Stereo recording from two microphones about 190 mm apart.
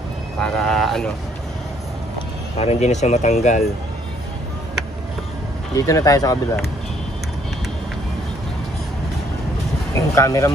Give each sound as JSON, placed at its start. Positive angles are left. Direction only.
{"t": 0.4, "sound": "vehicle", "side_deg": 5}
{"t": 2.5, "sound": "speech", "side_deg": 35}
{"t": 5.8, "sound": "speech", "side_deg": 15}
{"t": 9.9, "sound": "speech", "side_deg": 15}